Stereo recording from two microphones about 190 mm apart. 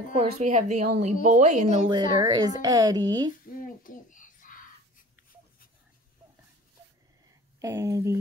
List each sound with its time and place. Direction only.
0.1 s a woman's voice: 35° right (ahead or behind)
1.9 s speech: 20° right (ahead or behind)
3.4 s a sound: 45° left (ahead or behind)
7.6 s speech: 15° right (ahead or behind)